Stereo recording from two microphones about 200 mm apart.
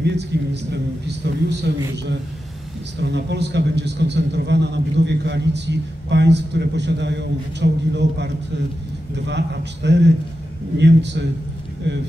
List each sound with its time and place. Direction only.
0.0 s a man's voice: 60° right (ahead or behind)
3.0 s a man's voice: 60° right (ahead or behind)